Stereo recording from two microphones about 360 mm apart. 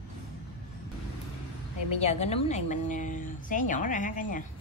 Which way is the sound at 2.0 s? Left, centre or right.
Centre.